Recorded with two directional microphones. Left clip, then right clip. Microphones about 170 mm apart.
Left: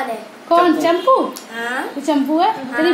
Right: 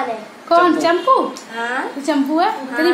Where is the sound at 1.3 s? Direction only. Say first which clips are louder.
Right 1 dB; 5° right (ahead or behind).